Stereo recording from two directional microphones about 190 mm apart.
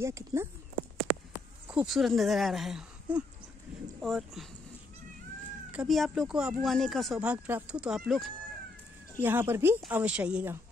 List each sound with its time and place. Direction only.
0.0 s speech: 15° right (ahead or behind)
1.7 s speech: 5° right (ahead or behind)
5.7 s speech: 5° right (ahead or behind)